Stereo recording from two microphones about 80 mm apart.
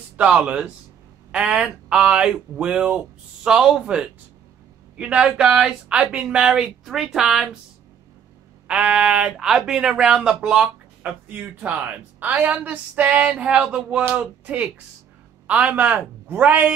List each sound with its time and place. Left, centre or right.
0.2 s speech: centre
8.6 s speech: centre
10.6 s a woman's voice: right